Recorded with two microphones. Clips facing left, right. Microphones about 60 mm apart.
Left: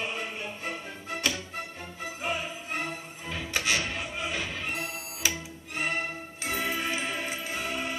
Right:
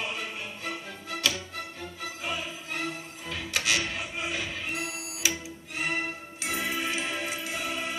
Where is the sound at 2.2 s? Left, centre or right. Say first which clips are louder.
Left 3 dB; left.